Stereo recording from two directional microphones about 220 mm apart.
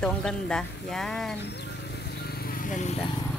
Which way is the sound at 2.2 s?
45° left (ahead or behind).